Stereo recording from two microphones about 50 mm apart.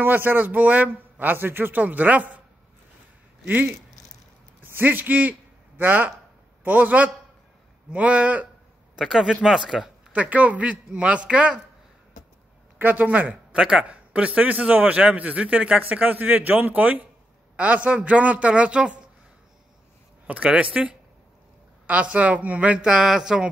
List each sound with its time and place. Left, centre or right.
0.0 s a man's voice: right
1.8 s a man's voice: right
3.4 s a man's voice: right
8.9 s speech: centre
10.1 s a woman's voice: right
12.8 s speech: right
13.6 s a man's voice: centre
15.8 s a man's voice: right
20.2 s a woman's voice: right; by 23.4 s centre